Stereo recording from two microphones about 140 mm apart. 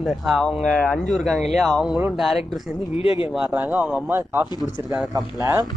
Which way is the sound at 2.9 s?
40° left (ahead or behind).